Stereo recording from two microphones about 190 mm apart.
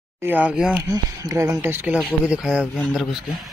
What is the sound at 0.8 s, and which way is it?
Speech, 20° right (ahead or behind).